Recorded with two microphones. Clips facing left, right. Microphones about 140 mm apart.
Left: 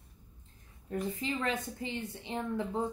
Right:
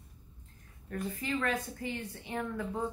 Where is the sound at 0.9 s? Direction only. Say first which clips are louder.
Left 1 dB; 20° left (ahead or behind).